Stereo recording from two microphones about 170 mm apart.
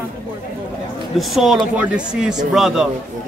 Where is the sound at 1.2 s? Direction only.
Centre (ahead or behind).